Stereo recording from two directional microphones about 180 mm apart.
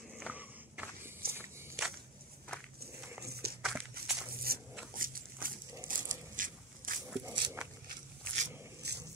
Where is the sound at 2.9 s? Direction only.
15° right (ahead or behind).